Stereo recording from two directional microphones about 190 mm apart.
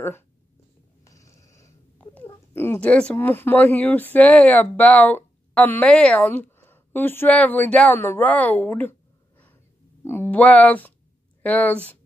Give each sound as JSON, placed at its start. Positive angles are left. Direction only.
{"t": 1.0, "sound": "speech", "side_deg": 15}
{"t": 10.0, "sound": "speech", "side_deg": 10}